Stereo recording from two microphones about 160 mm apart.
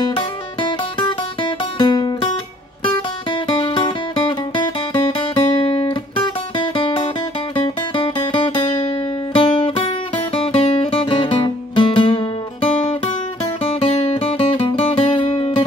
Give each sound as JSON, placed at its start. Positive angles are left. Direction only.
{"t": 0.1, "sound": "guitar", "side_deg": 30}
{"t": 2.8, "sound": "music", "side_deg": 30}
{"t": 13.6, "sound": "music", "side_deg": 35}